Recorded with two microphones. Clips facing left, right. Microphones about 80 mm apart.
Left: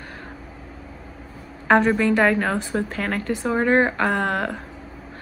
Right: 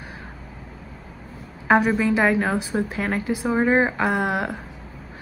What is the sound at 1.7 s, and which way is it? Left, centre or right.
A woman's voice, centre.